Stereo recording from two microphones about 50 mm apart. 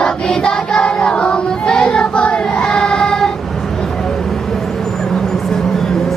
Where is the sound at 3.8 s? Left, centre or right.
Centre.